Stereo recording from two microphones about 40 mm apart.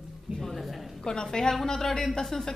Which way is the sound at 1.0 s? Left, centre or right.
Centre.